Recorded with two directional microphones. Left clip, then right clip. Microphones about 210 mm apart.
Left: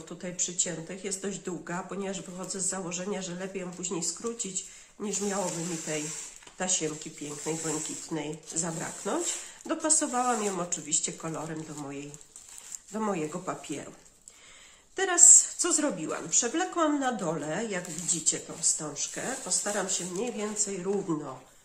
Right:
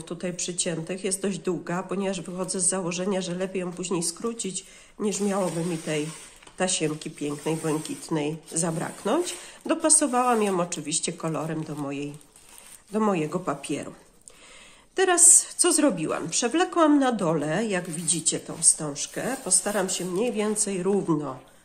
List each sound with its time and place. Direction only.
0.2 s a woman's voice: 40° right (ahead or behind)
6.6 s a woman's voice: 40° right (ahead or behind)
15.0 s a woman's voice: 40° right (ahead or behind)